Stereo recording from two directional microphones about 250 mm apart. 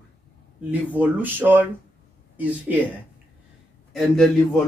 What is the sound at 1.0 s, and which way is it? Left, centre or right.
Speech, centre.